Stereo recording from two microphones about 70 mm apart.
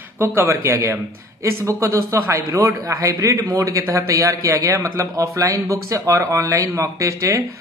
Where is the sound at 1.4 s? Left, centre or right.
Right.